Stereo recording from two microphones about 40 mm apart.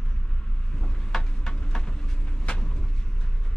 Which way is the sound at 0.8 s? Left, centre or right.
Centre.